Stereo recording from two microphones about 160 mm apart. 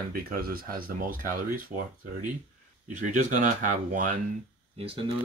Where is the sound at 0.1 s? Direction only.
65° right (ahead or behind).